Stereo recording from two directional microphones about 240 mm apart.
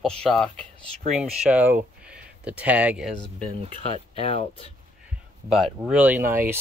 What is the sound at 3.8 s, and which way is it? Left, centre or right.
Speech, left.